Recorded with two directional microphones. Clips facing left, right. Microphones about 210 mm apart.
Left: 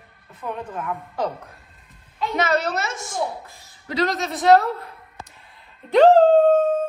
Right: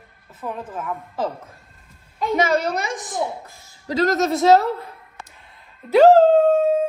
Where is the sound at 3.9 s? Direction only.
45° right (ahead or behind).